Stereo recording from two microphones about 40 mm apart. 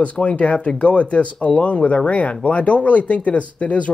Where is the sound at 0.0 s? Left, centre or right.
Left.